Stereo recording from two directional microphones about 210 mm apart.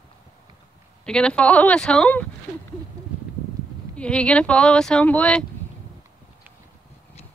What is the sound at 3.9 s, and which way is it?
Speech, 5° left (ahead or behind).